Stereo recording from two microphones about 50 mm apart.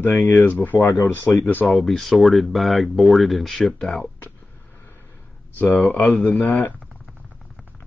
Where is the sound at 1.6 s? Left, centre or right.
Centre.